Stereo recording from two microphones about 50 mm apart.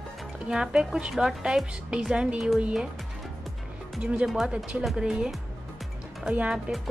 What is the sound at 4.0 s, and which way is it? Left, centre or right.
Speech, right.